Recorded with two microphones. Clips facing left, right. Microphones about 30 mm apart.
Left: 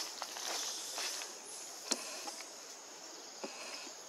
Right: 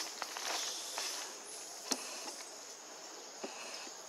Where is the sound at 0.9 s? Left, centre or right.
Centre.